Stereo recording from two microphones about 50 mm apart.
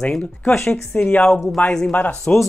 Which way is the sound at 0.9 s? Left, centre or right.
Left.